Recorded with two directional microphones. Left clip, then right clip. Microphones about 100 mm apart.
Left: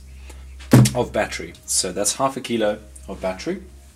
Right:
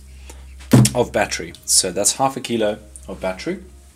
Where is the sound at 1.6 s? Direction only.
30° right (ahead or behind).